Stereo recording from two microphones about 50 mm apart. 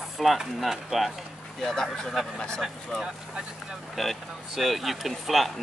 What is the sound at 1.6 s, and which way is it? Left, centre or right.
Speech, centre.